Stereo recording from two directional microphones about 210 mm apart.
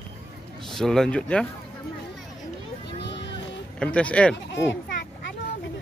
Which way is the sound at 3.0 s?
55° left (ahead or behind).